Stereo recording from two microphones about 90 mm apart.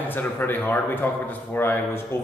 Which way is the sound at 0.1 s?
20° left (ahead or behind).